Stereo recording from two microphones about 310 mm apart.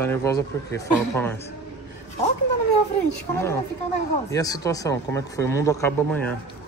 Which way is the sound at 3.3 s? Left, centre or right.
Centre.